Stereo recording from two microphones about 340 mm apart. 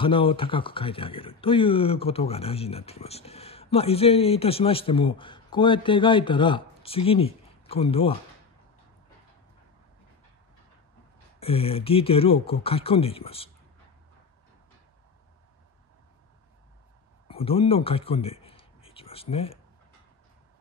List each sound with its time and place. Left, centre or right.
0.0 s speech: centre
11.3 s speech: centre
17.3 s a sound: centre
19.3 s speech: centre